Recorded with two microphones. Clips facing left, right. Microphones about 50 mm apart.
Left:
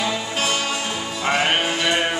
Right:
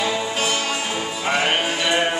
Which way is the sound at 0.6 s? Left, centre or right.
Right.